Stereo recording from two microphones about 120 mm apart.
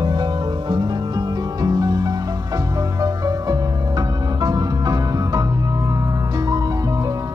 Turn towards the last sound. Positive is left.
turn(degrees=-30)  # may be behind; listen again after turning